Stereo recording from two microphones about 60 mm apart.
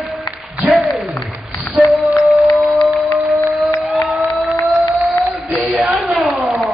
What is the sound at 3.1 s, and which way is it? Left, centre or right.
Crowd, left.